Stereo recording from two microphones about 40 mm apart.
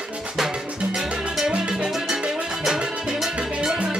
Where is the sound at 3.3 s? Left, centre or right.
Right.